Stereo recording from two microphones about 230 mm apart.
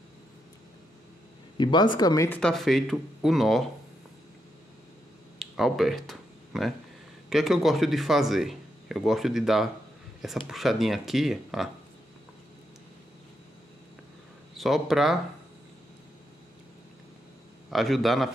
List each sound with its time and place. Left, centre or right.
1.6 s speech: centre
2.4 s speech: centre
5.4 s a sound: centre
7.2 s speech: centre
14.6 s speech: centre
17.6 s speech: centre